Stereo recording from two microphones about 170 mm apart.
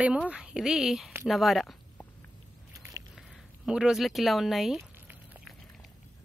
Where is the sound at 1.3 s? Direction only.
Centre (ahead or behind).